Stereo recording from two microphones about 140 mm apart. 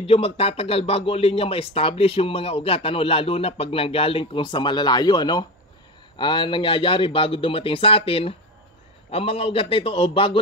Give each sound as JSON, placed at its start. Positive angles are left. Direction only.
{"t": 0.0, "sound": "a man's voice", "side_deg": 45}